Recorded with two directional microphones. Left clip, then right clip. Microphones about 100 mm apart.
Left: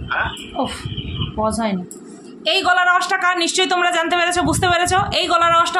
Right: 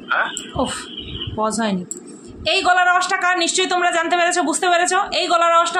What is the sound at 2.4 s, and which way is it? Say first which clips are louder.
A woman's voice: even; 5° left (ahead or behind).